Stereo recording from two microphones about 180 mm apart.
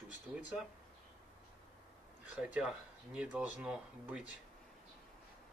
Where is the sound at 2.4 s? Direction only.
5° right (ahead or behind).